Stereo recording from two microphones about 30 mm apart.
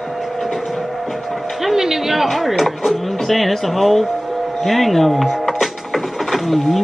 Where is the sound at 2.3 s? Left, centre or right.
Centre.